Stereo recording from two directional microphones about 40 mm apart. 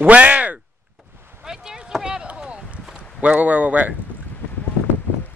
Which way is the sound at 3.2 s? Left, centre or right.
Right.